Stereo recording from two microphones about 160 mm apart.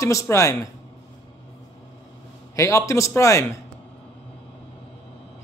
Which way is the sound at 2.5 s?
20° left (ahead or behind).